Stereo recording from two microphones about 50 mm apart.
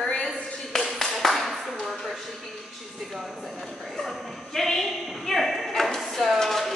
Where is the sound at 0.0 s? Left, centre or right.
Centre.